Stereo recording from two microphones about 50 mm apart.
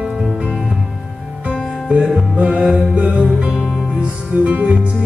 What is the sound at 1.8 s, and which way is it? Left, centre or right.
Music, centre.